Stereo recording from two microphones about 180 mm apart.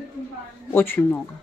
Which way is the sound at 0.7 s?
10° left (ahead or behind).